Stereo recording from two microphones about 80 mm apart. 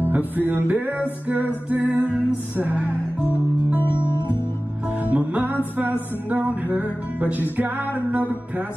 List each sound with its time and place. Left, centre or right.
0.1 s music: right
3.3 s guitar: left
5.1 s music: right